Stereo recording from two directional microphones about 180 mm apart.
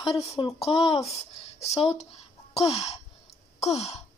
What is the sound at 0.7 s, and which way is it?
Speech, 35° left (ahead or behind).